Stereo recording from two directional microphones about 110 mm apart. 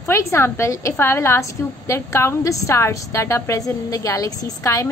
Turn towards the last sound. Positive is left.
turn(degrees=30)  # may be behind; listen again after turning